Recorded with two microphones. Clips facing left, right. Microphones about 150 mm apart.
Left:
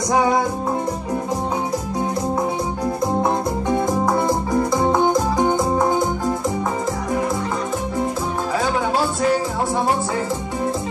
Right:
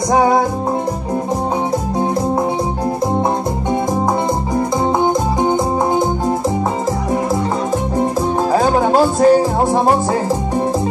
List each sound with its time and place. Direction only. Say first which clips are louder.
0.1 s music: right 5 dB; 35° right (ahead or behind)
4.9 s music: right 2 dB; 20° right (ahead or behind)
8.5 s music: right 7 dB; 45° right (ahead or behind)